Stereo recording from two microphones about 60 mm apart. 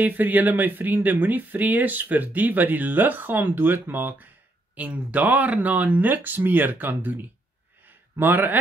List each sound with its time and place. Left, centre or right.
0.0 s speech: right
8.2 s speech: right